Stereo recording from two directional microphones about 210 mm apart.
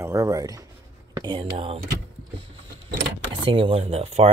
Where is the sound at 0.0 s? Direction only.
15° right (ahead or behind).